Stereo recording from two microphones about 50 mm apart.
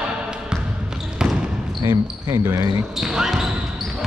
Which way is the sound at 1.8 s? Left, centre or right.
Right.